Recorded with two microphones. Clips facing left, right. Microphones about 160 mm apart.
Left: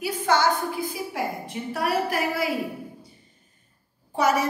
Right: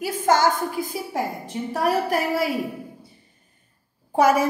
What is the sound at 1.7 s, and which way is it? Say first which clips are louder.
Speech: right 3 dB; 40° right (ahead or behind).